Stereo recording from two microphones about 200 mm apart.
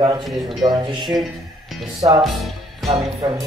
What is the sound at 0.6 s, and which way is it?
Speech, 25° right (ahead or behind).